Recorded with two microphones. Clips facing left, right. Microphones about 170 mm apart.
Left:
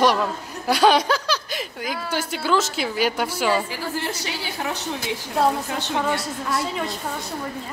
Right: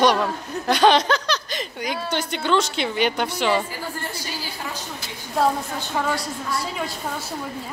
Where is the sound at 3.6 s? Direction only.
90° left; by 5.0 s 70° left (ahead or behind).